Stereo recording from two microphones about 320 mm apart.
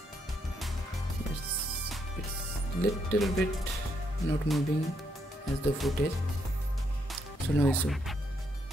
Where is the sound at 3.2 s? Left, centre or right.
Centre.